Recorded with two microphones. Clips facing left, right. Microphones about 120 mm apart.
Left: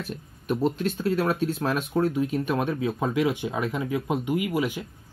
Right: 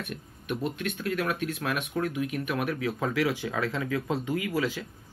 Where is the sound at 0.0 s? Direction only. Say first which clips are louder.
Left 3 dB; 30° left (ahead or behind).